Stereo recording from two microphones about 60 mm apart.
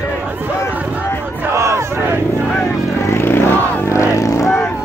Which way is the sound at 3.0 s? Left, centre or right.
Left.